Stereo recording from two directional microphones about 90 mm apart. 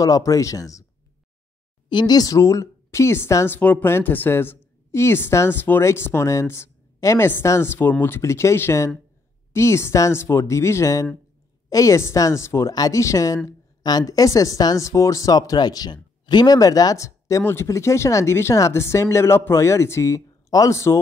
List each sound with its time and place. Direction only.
0.0 s speech: 40° left (ahead or behind)
1.9 s speech: 50° left (ahead or behind); by 3.4 s 30° left (ahead or behind)
3.4 s a woman's voice: 20° left (ahead or behind); by 21.0 s 35° left (ahead or behind)